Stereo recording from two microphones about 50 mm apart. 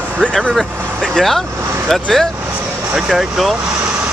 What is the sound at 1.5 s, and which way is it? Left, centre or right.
Speech, right.